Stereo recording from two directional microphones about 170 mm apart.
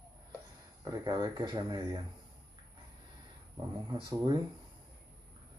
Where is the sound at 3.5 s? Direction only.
20° right (ahead or behind).